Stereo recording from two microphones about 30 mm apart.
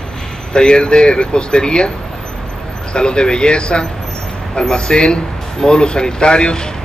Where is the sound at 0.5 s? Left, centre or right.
Left.